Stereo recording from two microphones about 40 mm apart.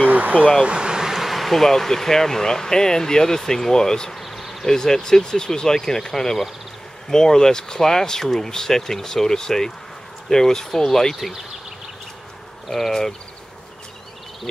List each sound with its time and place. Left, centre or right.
0.1 s vehicle: right
0.7 s bee: right
1.1 s speech: centre
4.1 s insect: centre
4.6 s speech: centre
12.6 s speech: centre